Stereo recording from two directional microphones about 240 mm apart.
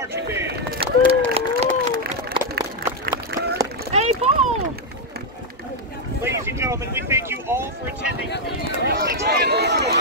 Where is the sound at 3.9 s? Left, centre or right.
Right.